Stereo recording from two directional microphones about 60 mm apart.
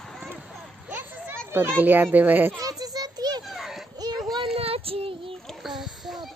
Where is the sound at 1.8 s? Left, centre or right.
Right.